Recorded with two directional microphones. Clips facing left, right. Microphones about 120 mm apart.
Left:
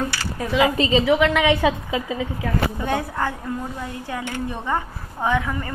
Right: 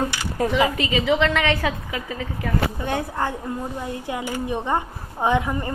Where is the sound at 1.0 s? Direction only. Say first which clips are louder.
Even; 10° left (ahead or behind).